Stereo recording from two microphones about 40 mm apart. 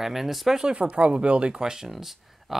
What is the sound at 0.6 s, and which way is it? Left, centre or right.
Speech, right.